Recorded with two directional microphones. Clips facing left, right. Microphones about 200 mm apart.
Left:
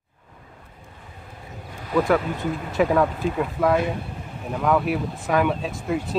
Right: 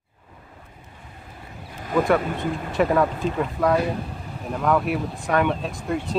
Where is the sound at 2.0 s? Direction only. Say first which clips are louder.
Right 2 dB; centre (ahead or behind).